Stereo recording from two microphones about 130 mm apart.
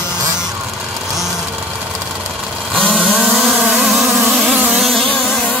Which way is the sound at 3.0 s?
5° right (ahead or behind).